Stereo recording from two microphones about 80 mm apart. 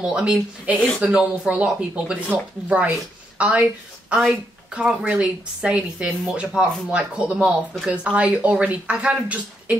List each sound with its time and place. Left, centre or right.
0.0 s speech: centre
0.7 s speech: centre
1.0 s speech: centre
5.0 s speech: centre